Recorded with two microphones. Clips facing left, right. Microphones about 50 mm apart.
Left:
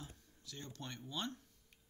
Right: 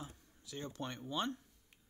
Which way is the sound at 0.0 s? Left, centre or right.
Centre.